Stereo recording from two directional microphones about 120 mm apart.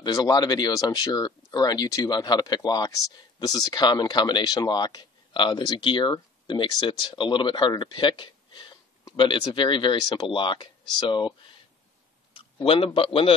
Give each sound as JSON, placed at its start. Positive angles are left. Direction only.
{"t": 0.0, "sound": "speech", "side_deg": 35}
{"t": 12.6, "sound": "speech", "side_deg": 50}